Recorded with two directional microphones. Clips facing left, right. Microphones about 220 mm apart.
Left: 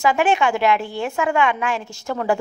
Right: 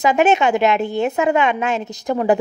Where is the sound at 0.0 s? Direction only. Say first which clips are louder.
Right 3 dB; 20° right (ahead or behind).